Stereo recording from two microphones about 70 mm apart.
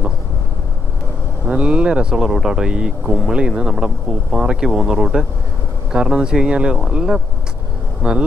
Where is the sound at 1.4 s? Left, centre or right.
Centre.